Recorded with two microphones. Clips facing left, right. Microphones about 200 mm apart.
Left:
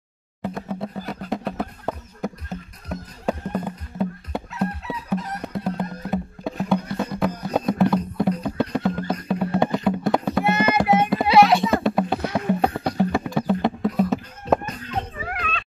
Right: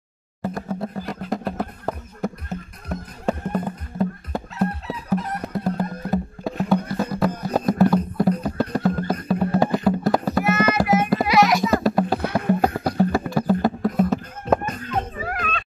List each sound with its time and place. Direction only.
0.4 s music: centre (ahead or behind)
4.5 s chicken: 35° right (ahead or behind)
5.4 s music: centre (ahead or behind)
10.4 s music: 30° left (ahead or behind)
11.6 s a sound: centre (ahead or behind)
12.6 s music: centre (ahead or behind)
14.7 s children playing: 50° right (ahead or behind)